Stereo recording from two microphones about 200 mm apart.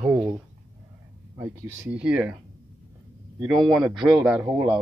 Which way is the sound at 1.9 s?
5° right (ahead or behind).